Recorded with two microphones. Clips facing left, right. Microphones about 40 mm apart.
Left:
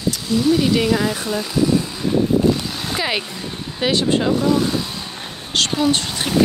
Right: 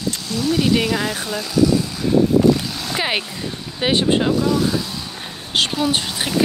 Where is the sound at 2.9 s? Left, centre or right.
Centre.